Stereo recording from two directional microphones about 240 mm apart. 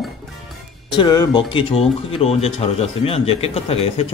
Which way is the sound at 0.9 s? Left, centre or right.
Centre.